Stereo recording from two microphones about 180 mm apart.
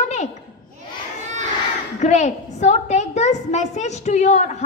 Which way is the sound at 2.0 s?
40° left (ahead or behind).